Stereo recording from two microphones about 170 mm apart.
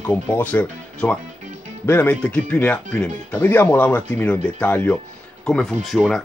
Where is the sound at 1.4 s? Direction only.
50° right (ahead or behind).